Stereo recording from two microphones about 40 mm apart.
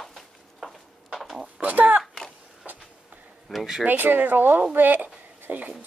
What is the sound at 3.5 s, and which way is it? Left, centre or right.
Speech, centre.